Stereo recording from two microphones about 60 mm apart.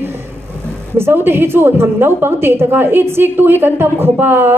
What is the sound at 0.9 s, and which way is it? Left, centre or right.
A woman's voice, right.